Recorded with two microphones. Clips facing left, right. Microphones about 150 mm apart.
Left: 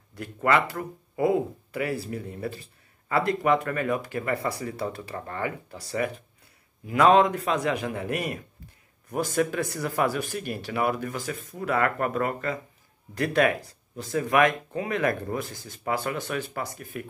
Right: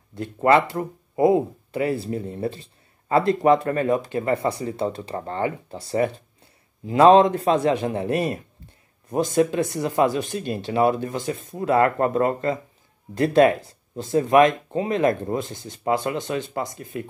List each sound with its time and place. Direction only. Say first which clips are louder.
0.1 s speech: right 6 dB; 25° right (ahead or behind)